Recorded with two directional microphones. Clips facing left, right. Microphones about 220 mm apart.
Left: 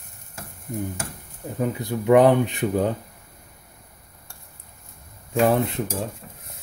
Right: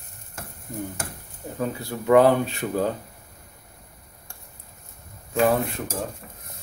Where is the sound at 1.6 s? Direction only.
20° left (ahead or behind).